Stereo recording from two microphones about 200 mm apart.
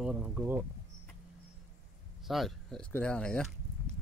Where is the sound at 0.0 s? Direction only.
5° right (ahead or behind).